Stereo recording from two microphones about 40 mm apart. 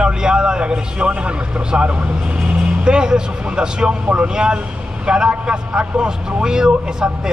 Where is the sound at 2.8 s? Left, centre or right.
Right.